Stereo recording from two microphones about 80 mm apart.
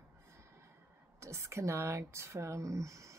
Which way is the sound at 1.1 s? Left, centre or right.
Right.